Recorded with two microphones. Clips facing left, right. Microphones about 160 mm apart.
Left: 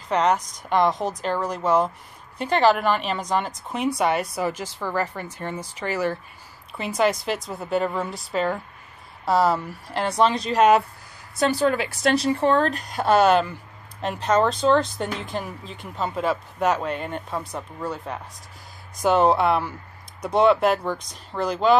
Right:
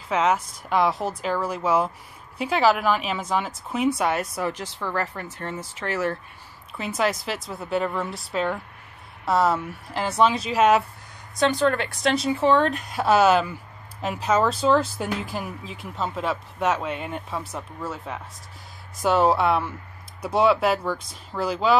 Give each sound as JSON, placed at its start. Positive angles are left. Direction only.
{"t": 0.1, "sound": "a woman's voice", "side_deg": -5}